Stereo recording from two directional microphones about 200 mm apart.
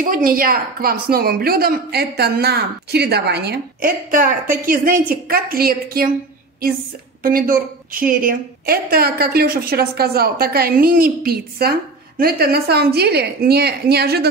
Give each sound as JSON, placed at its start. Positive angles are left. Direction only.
{"t": 0.0, "sound": "a woman's voice", "side_deg": -45}
{"t": 7.2, "sound": "a woman's voice", "side_deg": -45}